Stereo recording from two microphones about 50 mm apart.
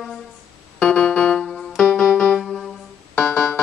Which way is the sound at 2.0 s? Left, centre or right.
Centre.